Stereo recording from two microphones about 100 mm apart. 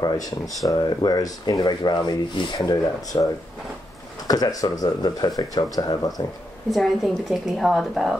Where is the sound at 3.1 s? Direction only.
40° left (ahead or behind).